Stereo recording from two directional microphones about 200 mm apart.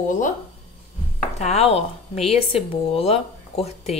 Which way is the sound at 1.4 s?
30° left (ahead or behind).